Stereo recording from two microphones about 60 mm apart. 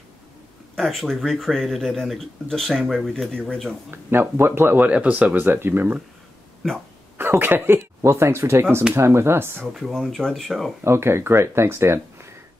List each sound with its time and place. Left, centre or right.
0.7 s speech: centre
3.9 s speech: right
4.8 s speech: right
7.2 s speech: right
8.0 s speech: right
9.8 s speech: centre
10.8 s speech: right